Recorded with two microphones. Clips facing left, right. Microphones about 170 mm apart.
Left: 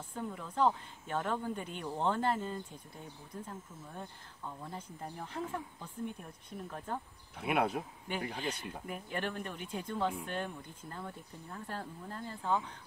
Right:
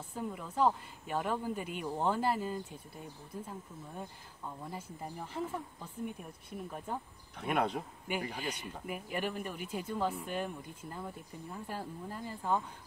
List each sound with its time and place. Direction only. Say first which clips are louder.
0.1 s speech: right 1 dB; 5° right (ahead or behind)
7.3 s speech: left 1 dB; 5° left (ahead or behind)
8.1 s speech: even; 5° right (ahead or behind)